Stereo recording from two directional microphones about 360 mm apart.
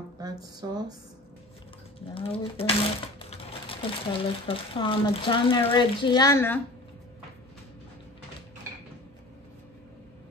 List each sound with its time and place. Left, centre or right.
0.2 s speech: centre
2.1 s speech: centre